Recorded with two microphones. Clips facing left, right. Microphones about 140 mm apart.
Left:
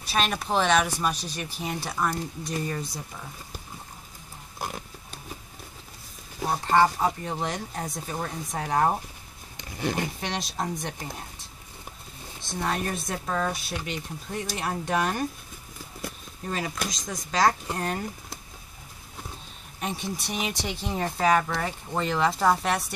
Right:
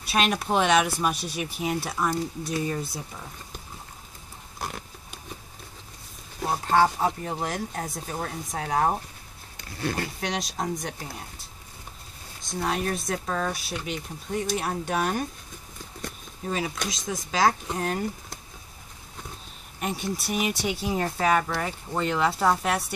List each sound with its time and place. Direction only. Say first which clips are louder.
0.1 s speech: right 2 dB; 5° right (ahead or behind)
6.4 s speech: even; centre (ahead or behind)
9.6 s speech: left 1 dB; 20° left (ahead or behind)
10.2 s speech: right 1 dB; centre (ahead or behind)
12.5 s speech: right 1 dB; centre (ahead or behind)
19.8 s speech: right 2 dB; centre (ahead or behind)